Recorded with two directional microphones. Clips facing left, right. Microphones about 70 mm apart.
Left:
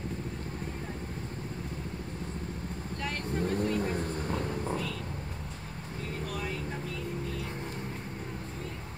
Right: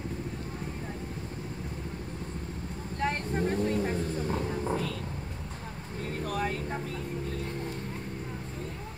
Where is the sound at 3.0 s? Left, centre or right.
Right.